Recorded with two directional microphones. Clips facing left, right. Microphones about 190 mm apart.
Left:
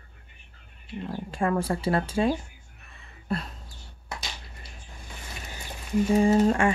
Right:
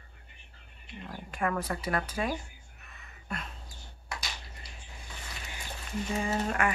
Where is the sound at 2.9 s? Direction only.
30° left (ahead or behind).